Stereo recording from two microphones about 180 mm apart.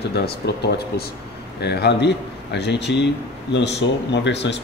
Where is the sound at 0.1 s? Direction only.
65° left (ahead or behind).